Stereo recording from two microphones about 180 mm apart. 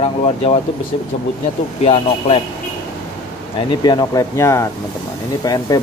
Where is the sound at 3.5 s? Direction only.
25° left (ahead or behind).